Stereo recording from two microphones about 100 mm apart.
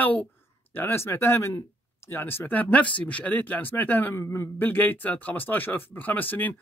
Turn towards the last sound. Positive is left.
turn(degrees=20)  # may be behind; listen again after turning